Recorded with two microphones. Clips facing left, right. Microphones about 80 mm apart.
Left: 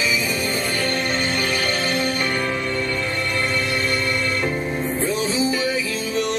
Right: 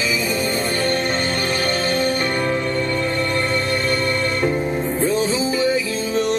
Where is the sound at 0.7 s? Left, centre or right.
Right.